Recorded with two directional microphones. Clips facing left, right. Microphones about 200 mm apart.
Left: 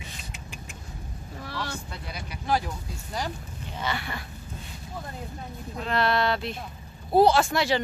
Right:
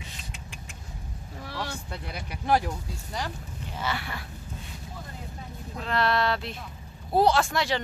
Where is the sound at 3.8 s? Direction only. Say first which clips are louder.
Left 1 dB; 5° right (ahead or behind).